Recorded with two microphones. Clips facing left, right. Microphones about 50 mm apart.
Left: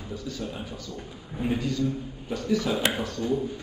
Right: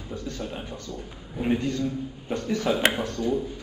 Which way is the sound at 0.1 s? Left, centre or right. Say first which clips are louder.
Right 3 dB; right.